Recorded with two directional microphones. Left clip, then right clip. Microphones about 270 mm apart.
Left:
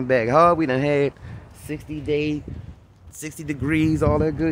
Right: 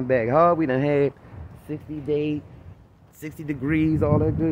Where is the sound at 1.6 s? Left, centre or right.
Left.